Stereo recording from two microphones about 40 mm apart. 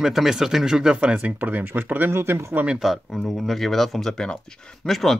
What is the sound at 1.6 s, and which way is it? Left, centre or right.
Speech, right.